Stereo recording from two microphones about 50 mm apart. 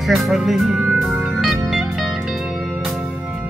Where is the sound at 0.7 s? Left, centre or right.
Centre.